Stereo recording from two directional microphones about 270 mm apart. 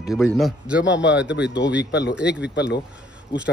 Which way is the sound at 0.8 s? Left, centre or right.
Left.